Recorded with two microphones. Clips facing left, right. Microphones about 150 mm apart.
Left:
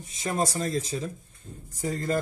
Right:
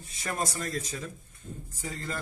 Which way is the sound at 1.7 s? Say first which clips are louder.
Left 10 dB; 40° left (ahead or behind).